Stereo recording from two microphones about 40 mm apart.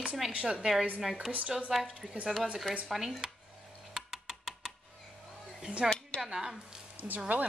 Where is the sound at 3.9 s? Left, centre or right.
Centre.